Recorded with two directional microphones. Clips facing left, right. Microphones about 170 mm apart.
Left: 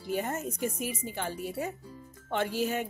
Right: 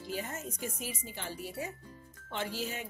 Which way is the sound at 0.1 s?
60° left (ahead or behind).